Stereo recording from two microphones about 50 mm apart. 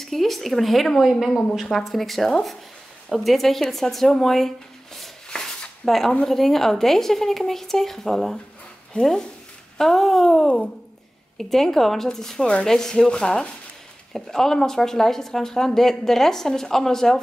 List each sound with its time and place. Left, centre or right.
0.0 s speech: centre
5.3 s a sound: centre
5.9 s speech: centre
9.8 s speech: centre
14.1 s speech: centre